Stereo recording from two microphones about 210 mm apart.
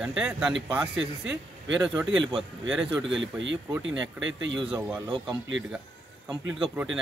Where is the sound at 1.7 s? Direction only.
5° right (ahead or behind).